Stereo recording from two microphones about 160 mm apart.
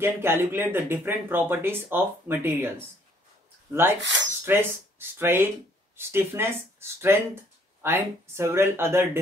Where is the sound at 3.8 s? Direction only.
15° right (ahead or behind).